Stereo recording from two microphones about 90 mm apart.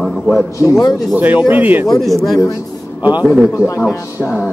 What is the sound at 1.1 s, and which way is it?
Speech, 20° right (ahead or behind).